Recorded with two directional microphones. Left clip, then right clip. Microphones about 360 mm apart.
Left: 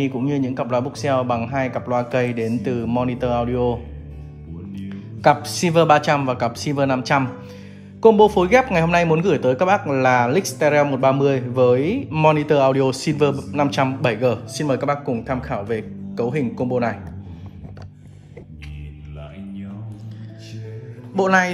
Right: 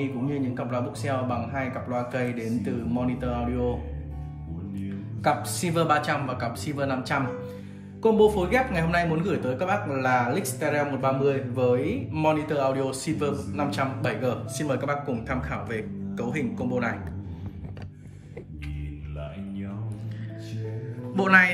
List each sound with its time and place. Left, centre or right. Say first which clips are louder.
0.0 s a man's voice: left 7 dB; centre
4.7 s a man's voice: left 1 dB; centre
21.2 s a man's voice: left 2 dB; centre